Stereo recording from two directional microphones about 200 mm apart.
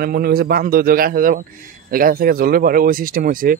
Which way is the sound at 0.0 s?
50° right (ahead or behind).